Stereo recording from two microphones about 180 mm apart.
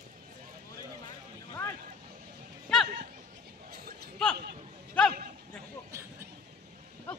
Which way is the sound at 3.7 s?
55° right (ahead or behind).